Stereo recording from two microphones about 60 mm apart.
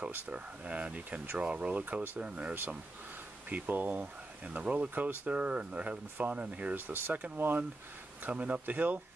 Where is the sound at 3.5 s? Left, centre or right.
Right.